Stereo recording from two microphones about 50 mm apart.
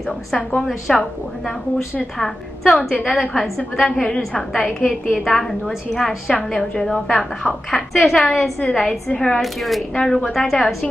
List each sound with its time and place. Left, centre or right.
0.9 s a woman's voice: centre
2.1 s a woman's voice: centre
9.1 s speech: left
9.4 s a woman's voice: centre